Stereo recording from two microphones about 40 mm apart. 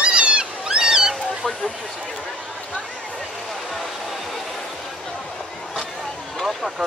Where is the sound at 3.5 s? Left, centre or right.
Centre.